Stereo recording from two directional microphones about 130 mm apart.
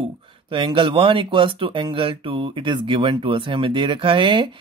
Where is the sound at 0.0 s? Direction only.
40° right (ahead or behind).